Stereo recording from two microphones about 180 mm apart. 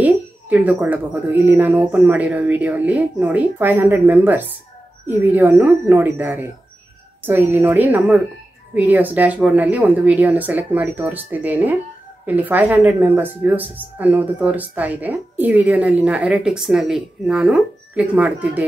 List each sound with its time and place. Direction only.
0.0 s speech: 10° right (ahead or behind)